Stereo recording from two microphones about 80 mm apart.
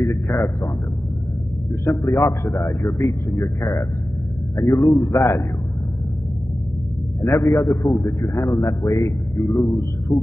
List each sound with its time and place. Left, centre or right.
0.0 s a sound: left
1.9 s a man's voice: left
7.2 s a man's voice: left